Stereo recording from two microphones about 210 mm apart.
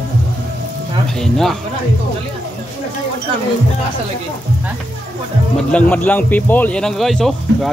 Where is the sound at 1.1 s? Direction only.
Centre (ahead or behind).